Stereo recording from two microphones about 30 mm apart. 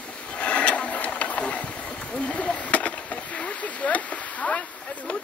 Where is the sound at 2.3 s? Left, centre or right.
Left.